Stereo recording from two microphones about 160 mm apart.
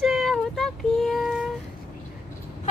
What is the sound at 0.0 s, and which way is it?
Child singing, centre (ahead or behind).